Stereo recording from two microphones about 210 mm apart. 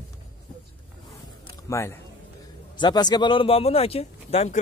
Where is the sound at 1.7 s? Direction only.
15° left (ahead or behind).